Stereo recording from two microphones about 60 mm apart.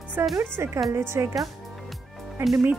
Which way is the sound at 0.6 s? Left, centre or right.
Right.